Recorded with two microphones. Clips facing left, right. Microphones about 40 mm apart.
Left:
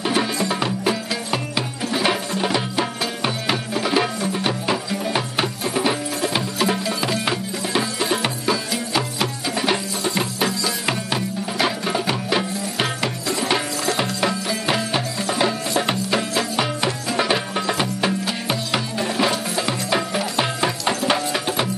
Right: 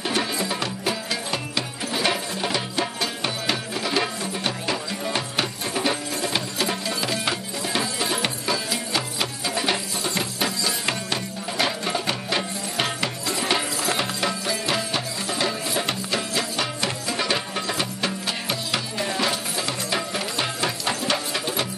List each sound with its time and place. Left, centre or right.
0.0 s music: centre